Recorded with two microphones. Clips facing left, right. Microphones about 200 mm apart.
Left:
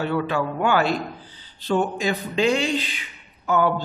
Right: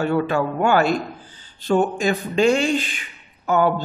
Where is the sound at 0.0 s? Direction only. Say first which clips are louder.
Right 3 dB; 45° right (ahead or behind).